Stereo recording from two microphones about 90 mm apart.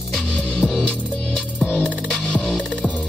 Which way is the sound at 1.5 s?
15° left (ahead or behind).